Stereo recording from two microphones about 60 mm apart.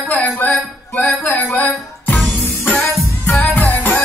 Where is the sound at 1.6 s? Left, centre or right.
Left.